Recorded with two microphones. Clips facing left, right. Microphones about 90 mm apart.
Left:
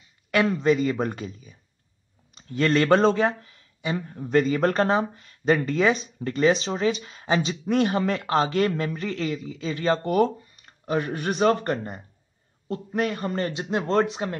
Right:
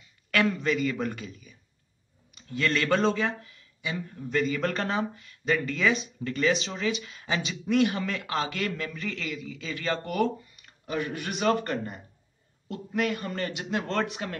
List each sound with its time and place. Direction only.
0.3 s speech: 25° left (ahead or behind)